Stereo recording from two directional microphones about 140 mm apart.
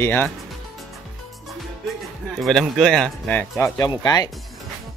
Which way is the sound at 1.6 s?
Centre (ahead or behind).